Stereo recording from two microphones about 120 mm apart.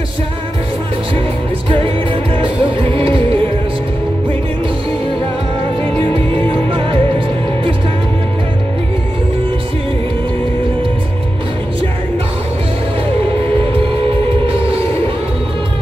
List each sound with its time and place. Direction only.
2.3 s music: 50° right (ahead or behind)
5.9 s music: 50° right (ahead or behind)